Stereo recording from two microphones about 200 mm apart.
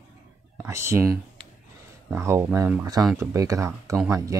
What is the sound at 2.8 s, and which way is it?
Speech, 20° right (ahead or behind).